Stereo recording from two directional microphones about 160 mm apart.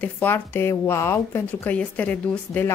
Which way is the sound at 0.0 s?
10° left (ahead or behind).